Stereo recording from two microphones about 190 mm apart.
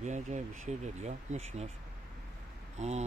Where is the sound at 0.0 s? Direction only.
40° right (ahead or behind).